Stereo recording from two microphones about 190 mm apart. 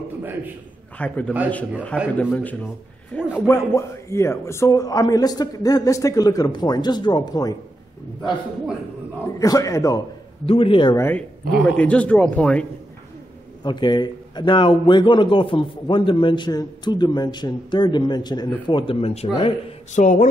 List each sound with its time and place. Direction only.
0.2 s a man's voice: 10° right (ahead or behind)
0.9 s a man's voice: 5° left (ahead or behind)
9.4 s speech: 15° left (ahead or behind)
10.4 s a man's voice: 30° left (ahead or behind)
11.0 s speech: 10° left (ahead or behind)
13.7 s a man's voice: 20° left (ahead or behind); by 20.2 s 40° left (ahead or behind)